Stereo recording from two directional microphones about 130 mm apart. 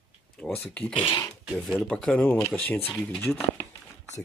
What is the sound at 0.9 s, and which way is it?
Speech, 40° left (ahead or behind).